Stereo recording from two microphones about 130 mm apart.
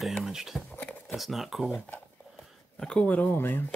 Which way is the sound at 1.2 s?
Centre (ahead or behind).